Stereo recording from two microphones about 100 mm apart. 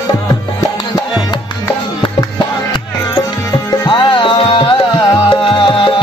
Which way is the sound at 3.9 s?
55° left (ahead or behind).